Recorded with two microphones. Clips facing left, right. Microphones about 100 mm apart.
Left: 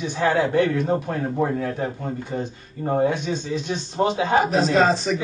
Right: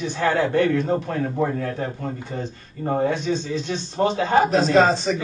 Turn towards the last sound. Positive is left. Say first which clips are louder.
# right 2 dB
turn(degrees=0)  # may be behind; listen again after turning